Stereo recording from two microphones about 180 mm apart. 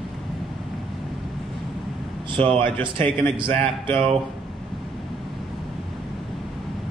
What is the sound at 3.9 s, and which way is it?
Speech, 30° right (ahead or behind).